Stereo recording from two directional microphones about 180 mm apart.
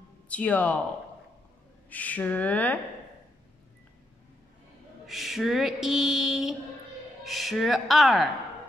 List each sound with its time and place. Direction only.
0.3 s speech: 5° left (ahead or behind)
1.9 s speech: 10° left (ahead or behind)
5.0 s a sound: centre (ahead or behind)